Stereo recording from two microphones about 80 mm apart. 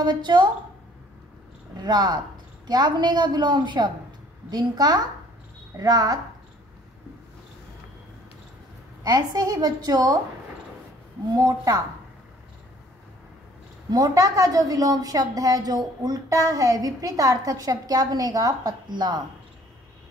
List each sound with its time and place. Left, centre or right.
0.0 s a woman's voice: right
1.8 s a woman's voice: right
4.5 s a woman's voice: right
9.0 s a woman's voice: right
11.3 s a woman's voice: right
13.8 s a woman's voice: right